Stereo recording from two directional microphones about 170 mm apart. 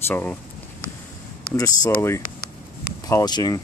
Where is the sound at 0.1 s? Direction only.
10° left (ahead or behind).